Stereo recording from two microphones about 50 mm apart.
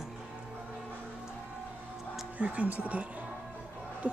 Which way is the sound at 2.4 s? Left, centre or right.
Right.